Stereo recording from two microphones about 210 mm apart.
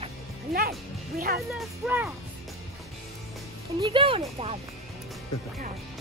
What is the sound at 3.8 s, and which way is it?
Speech, 25° right (ahead or behind).